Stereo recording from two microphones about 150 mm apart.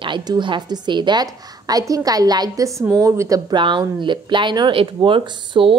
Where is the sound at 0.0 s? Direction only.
30° right (ahead or behind).